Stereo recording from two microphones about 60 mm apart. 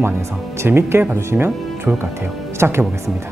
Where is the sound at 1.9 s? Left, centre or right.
Right.